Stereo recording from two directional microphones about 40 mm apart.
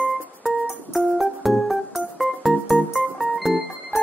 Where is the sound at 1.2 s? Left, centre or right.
Centre.